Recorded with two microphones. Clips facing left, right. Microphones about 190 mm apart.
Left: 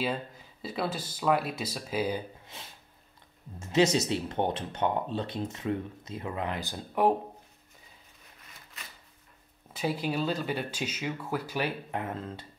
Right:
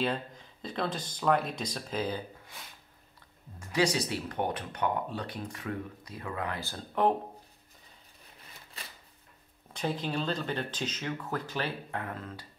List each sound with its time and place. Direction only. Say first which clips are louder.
0.0 s speech: even; 5° left (ahead or behind)
2.4 s speech: left 2 dB; 25° left (ahead or behind)
8.8 s a sound: right 2 dB; 30° right (ahead or behind)
9.7 s speech: left 2 dB; 5° left (ahead or behind); by 12.4 s 25° left (ahead or behind)